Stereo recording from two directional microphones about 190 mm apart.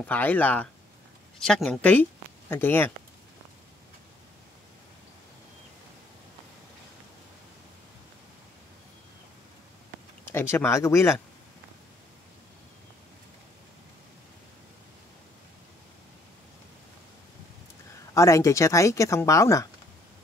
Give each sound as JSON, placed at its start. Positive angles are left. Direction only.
{"t": 0.0, "sound": "speech", "side_deg": 10}
{"t": 10.2, "sound": "speech", "side_deg": 15}
{"t": 18.1, "sound": "speech", "side_deg": 15}